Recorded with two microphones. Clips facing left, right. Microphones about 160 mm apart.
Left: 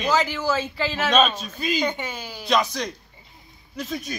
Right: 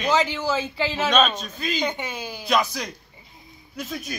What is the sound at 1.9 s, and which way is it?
Speech, 15° right (ahead or behind).